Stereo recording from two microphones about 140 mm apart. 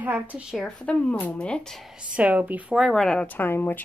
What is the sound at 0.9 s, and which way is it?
Speech, 10° left (ahead or behind).